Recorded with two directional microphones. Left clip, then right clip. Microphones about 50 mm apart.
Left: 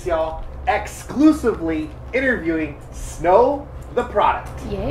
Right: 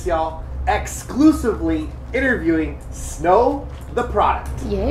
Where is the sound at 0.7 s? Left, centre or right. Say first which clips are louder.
Even; right.